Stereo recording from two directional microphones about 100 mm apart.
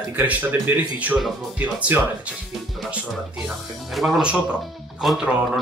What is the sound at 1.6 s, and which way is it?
Speech, 10° right (ahead or behind).